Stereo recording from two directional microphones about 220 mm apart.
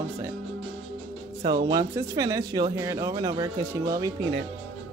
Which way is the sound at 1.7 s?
15° right (ahead or behind).